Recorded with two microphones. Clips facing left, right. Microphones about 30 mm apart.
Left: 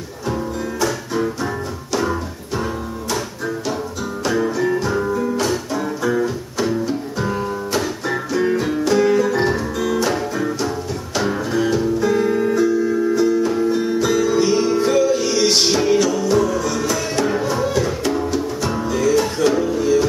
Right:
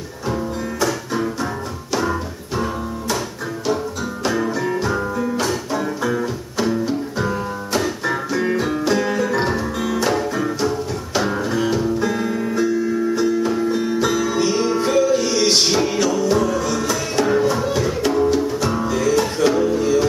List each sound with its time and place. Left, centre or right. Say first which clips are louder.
0.3 s music: even; centre
4.2 s music: left 2 dB; centre